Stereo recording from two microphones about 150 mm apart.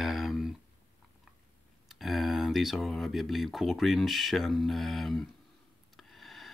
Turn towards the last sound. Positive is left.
turn(degrees=0)  # may be behind; listen again after turning